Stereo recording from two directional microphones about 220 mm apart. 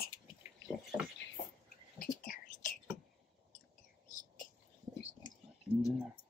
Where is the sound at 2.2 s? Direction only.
40° left (ahead or behind).